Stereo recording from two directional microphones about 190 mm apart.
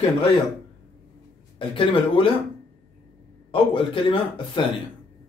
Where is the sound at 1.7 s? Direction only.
30° left (ahead or behind).